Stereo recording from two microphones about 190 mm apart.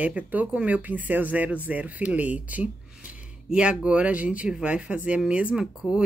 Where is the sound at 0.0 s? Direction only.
10° right (ahead or behind).